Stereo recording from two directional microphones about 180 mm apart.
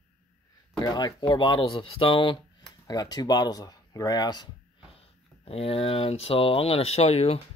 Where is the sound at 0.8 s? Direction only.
20° left (ahead or behind).